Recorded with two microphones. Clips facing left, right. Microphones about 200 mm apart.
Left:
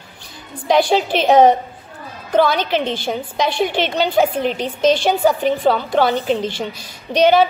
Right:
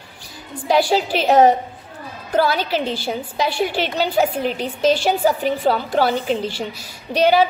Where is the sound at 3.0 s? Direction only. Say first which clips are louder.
Left 2 dB; 5° right (ahead or behind).